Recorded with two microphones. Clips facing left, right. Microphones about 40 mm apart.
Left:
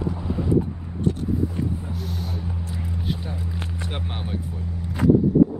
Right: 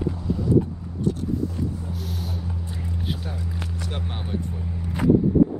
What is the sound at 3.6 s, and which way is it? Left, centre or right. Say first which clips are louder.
Vehicle: even; left.